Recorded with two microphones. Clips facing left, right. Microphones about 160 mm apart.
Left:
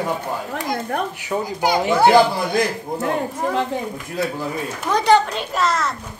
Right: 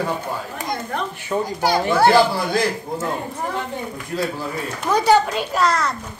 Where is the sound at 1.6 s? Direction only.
15° left (ahead or behind).